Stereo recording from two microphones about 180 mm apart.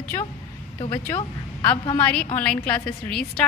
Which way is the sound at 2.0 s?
10° left (ahead or behind).